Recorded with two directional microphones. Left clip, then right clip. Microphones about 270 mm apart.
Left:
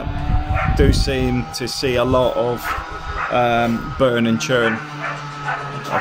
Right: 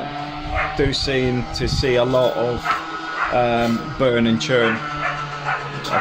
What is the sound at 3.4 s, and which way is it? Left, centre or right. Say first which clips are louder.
Speech: left 3 dB; centre.